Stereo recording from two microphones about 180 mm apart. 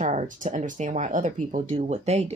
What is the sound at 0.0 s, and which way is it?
A woman's voice, 40° right (ahead or behind).